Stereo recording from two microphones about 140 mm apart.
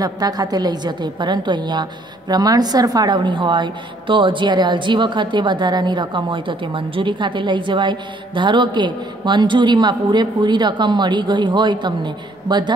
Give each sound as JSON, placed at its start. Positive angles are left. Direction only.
{"t": 0.0, "sound": "a woman's voice", "side_deg": -25}